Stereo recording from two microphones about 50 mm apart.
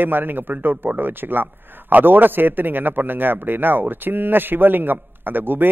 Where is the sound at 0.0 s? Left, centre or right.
Right.